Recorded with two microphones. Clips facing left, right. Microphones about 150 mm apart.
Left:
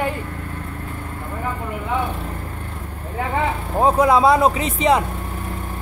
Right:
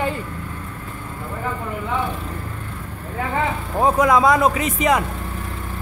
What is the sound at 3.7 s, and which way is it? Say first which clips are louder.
Speech: left 1 dB; 30° left (ahead or behind).